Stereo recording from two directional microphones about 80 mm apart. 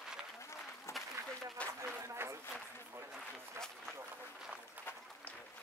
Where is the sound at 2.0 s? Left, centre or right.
Right.